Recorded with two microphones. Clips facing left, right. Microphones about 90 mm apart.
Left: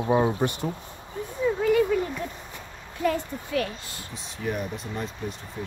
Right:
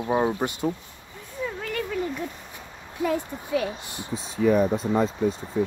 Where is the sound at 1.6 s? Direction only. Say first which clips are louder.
Left 7 dB; 5° left (ahead or behind).